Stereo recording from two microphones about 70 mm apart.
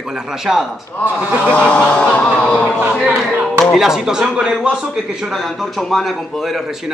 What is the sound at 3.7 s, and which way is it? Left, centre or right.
A man's voice, centre.